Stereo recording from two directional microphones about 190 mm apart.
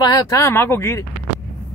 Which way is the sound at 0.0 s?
20° left (ahead or behind).